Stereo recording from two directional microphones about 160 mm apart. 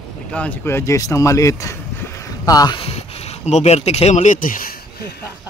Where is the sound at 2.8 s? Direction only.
40° left (ahead or behind); by 5.1 s 65° left (ahead or behind).